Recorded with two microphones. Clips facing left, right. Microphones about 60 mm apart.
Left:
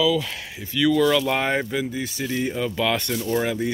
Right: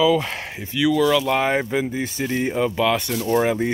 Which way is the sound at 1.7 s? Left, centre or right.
Right.